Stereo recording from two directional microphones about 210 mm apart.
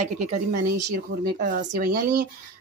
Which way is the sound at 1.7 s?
40° right (ahead or behind).